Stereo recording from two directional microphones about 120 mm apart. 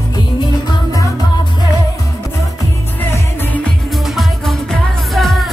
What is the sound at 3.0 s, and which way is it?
Music, 15° left (ahead or behind).